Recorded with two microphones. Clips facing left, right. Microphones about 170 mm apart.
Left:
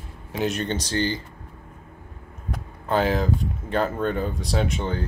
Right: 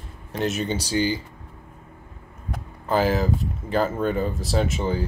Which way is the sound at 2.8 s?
Centre (ahead or behind).